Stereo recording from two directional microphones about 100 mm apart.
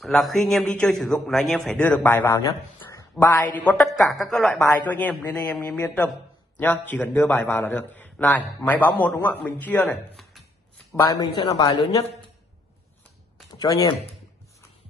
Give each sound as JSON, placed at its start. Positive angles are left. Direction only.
{"t": 0.0, "sound": "a man's voice", "side_deg": 0}
{"t": 1.8, "sound": "speech", "side_deg": 15}
{"t": 3.8, "sound": "a man's voice", "side_deg": 0}
{"t": 11.0, "sound": "speech", "side_deg": 35}
{"t": 13.6, "sound": "speech", "side_deg": 35}